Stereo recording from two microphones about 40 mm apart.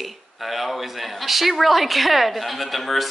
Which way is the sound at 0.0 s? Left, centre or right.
Centre.